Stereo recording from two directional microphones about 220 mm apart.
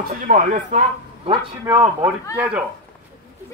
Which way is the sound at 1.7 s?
15° right (ahead or behind).